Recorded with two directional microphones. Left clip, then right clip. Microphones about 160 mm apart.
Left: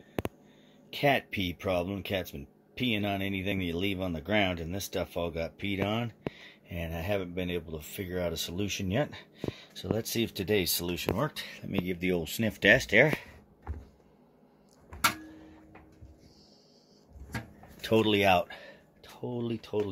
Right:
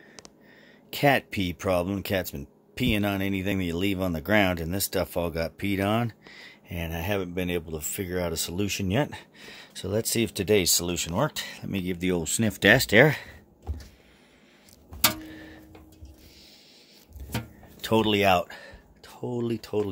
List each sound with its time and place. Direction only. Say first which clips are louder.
0.8 s speech: right 4 dB; 30° right (ahead or behind)
6.7 s speech: right 3 dB; 20° right (ahead or behind); by 12.9 s 40° right (ahead or behind)
17.7 s speech: right 2 dB; 15° right (ahead or behind)